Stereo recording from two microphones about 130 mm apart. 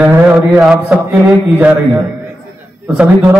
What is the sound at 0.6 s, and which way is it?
Speech, 5° right (ahead or behind).